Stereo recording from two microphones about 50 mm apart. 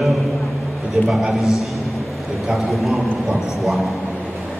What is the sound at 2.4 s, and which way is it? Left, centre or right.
A man's voice, centre.